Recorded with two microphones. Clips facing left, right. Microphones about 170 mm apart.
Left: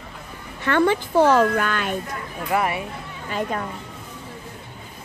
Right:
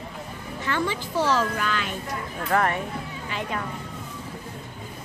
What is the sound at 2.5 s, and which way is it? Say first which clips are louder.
Speech: left 1 dB; 10° left (ahead or behind).